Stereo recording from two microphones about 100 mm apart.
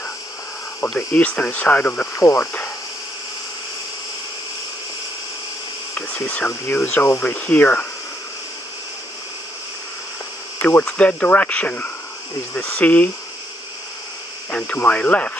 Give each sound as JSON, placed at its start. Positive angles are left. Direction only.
{"t": 0.8, "sound": "speech", "side_deg": 15}
{"t": 2.4, "sound": "insect", "side_deg": 15}
{"t": 5.9, "sound": "speech", "side_deg": 15}
{"t": 10.6, "sound": "speech", "side_deg": 20}
{"t": 14.5, "sound": "speech", "side_deg": 15}